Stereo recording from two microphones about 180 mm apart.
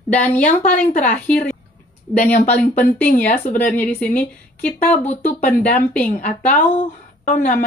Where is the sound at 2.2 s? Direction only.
40° left (ahead or behind).